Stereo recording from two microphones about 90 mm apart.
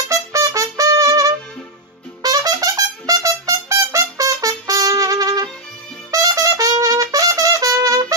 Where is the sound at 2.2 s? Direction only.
45° right (ahead or behind).